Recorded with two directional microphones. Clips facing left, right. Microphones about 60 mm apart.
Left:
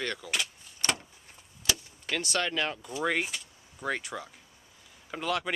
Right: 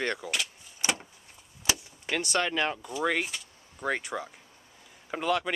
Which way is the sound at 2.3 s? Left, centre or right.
Centre.